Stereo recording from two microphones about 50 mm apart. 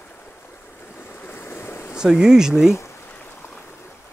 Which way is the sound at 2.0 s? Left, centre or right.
Centre.